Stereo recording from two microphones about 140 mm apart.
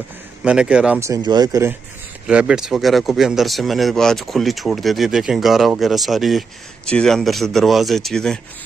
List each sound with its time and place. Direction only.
0.4 s speech: 5° right (ahead or behind)
0.9 s speech: 25° right (ahead or behind)
2.2 s speech: 5° right (ahead or behind)